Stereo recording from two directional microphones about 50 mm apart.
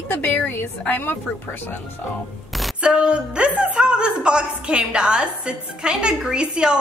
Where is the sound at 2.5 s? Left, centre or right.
Centre.